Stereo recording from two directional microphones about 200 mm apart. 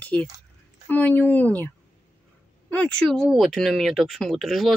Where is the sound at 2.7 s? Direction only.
5° left (ahead or behind).